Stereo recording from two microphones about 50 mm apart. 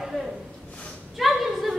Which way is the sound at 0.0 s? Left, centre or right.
Centre.